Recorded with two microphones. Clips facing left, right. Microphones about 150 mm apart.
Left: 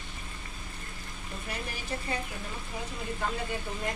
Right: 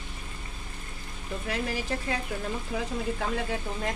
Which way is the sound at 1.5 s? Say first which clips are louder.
Right 6 dB; 90° right.